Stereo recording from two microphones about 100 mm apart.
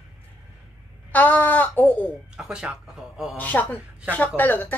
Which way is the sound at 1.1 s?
15° left (ahead or behind).